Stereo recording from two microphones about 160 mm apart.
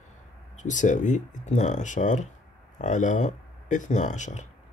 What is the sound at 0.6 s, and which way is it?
A man's voice, 50° left (ahead or behind).